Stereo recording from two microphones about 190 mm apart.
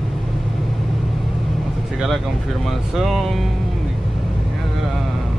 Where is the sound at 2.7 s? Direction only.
Centre (ahead or behind).